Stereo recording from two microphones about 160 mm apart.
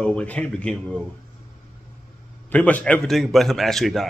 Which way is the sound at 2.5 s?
10° left (ahead or behind).